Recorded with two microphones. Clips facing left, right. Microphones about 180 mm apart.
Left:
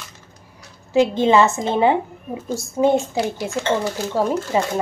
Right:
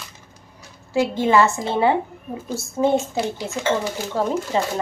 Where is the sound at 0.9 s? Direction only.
20° left (ahead or behind).